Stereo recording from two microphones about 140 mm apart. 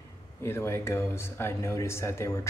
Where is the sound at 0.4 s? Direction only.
20° left (ahead or behind).